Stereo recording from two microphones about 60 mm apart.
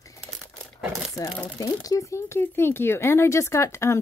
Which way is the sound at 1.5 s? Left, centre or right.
Left.